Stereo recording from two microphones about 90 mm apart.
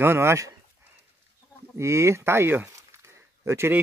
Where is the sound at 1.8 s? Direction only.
30° right (ahead or behind).